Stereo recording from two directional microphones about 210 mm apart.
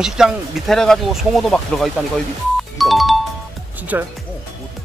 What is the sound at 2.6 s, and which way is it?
Music, centre (ahead or behind).